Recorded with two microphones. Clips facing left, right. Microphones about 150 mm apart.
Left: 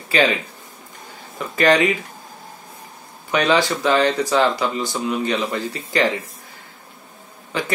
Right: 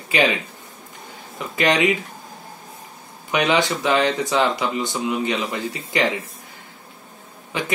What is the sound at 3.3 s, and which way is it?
Speech, 20° right (ahead or behind).